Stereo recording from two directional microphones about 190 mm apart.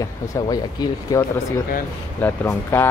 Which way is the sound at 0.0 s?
20° left (ahead or behind).